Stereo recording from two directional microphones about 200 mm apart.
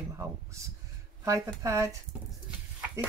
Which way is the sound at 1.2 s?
15° right (ahead or behind).